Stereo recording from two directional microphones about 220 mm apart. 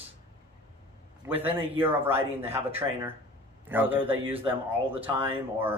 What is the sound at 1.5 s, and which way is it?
A man's voice, 25° right (ahead or behind).